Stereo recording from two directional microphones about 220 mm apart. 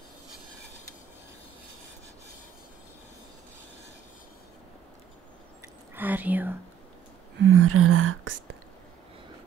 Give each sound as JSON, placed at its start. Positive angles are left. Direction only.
{"t": 5.9, "sound": "whispering", "side_deg": -10}
{"t": 7.4, "sound": "speech", "side_deg": -80}